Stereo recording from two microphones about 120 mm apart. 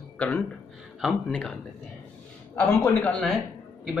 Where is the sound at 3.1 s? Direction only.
10° left (ahead or behind).